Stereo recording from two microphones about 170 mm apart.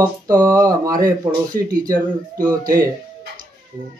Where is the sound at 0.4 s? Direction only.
15° right (ahead or behind).